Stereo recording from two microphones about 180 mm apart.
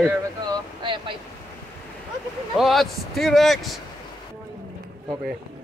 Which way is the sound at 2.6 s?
Centre (ahead or behind).